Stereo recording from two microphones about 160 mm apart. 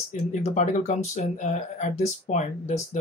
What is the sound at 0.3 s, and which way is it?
Speech, 50° left (ahead or behind).